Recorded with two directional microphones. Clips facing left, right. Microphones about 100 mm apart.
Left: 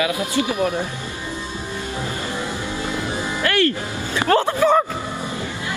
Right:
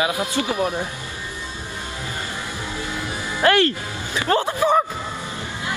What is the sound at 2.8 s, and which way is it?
Music, 25° left (ahead or behind).